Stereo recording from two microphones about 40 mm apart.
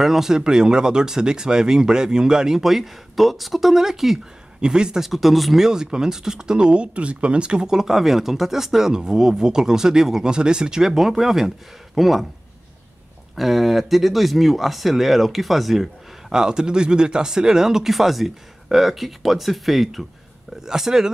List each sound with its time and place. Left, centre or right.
0.0 s speech: centre
4.6 s speech: right
5.0 s speech: centre
5.6 s speech: centre
7.7 s speech: centre
10.9 s speech: centre
13.4 s speech: centre
16.3 s speech: centre